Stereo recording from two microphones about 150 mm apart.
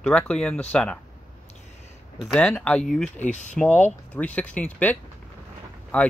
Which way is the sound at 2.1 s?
5° left (ahead or behind).